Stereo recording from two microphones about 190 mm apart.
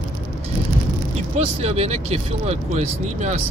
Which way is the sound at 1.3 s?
35° right (ahead or behind).